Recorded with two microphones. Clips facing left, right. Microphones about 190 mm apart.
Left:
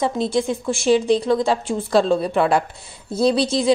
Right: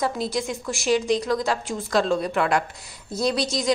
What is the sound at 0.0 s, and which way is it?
A woman's voice, 25° left (ahead or behind).